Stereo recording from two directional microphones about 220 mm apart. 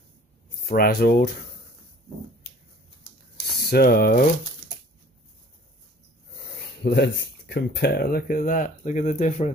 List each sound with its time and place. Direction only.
0.7 s speech: 45° left (ahead or behind)
3.7 s speech: 40° left (ahead or behind)
6.8 s speech: 50° left (ahead or behind); by 9.5 s 35° left (ahead or behind)